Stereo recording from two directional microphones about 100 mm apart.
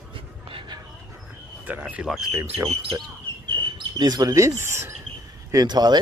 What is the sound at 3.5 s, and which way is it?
Speech, 50° right (ahead or behind).